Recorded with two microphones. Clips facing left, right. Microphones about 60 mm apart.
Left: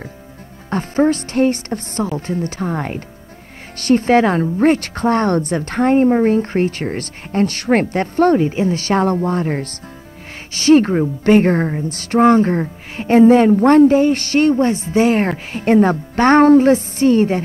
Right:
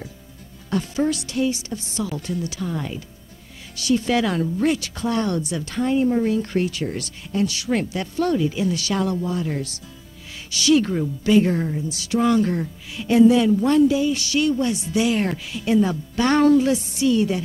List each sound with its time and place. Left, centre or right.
0.7 s a woman's voice: left